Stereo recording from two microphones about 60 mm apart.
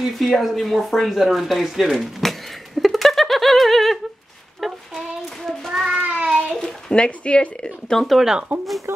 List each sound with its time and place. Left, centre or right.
0.0 s a sound: centre
4.6 s child singing: centre
5.9 s child singing: centre
6.6 s speech: centre
8.0 s speech: centre
8.9 s speech: right